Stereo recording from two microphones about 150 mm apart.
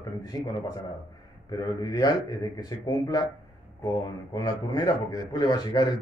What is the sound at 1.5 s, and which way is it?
Speech, 25° left (ahead or behind).